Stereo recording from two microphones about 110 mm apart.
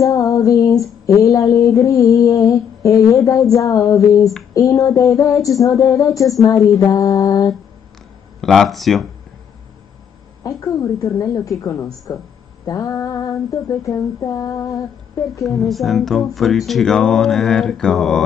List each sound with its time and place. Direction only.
0.0 s female singing: 30° left (ahead or behind)
2.1 s a sound: 30° left (ahead or behind)
4.6 s female singing: 30° left (ahead or behind)
8.4 s mantra: centre (ahead or behind)
10.4 s female singing: 30° left (ahead or behind)
15.6 s mantra: centre (ahead or behind)